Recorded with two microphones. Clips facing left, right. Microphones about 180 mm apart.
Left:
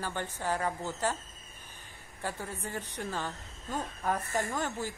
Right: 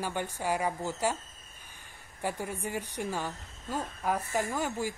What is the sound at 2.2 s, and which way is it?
Speech, 15° right (ahead or behind).